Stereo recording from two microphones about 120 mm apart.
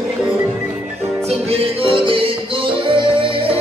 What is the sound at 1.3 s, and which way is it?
Music, 50° right (ahead or behind).